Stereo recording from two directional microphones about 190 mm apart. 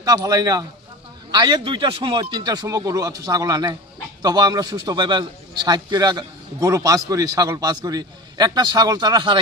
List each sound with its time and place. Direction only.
0.0 s a man's voice: 20° right (ahead or behind)